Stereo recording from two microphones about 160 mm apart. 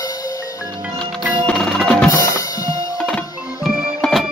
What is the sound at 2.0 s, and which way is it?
Music, 20° left (ahead or behind).